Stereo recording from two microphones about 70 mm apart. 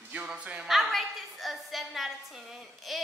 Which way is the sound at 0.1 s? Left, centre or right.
Centre.